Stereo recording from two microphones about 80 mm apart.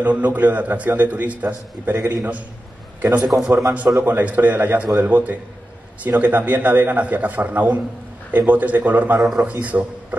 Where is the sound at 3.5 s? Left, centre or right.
Right.